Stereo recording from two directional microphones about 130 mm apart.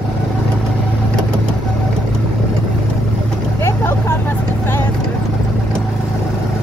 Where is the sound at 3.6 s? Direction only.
20° left (ahead or behind).